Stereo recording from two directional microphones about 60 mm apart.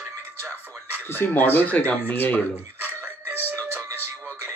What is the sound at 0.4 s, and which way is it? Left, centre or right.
Music, right.